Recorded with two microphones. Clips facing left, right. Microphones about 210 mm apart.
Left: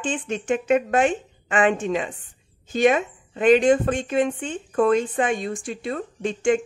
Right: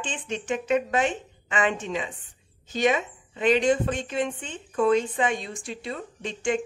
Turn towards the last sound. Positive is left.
turn(degrees=50)  # may be behind; listen again after turning